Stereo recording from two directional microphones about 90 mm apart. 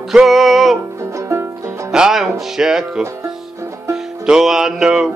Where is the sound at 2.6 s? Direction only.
5° right (ahead or behind).